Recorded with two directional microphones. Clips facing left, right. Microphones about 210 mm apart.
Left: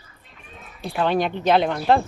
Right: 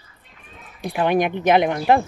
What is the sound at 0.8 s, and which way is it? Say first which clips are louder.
Speech: right 2 dB; 15° right (ahead or behind).